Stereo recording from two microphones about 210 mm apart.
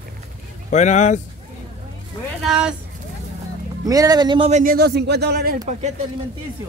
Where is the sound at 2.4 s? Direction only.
5° right (ahead or behind).